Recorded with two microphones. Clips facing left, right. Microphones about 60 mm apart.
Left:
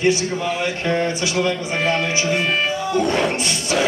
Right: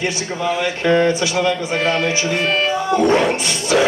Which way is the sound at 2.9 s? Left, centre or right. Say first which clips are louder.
Right 5 dB; right.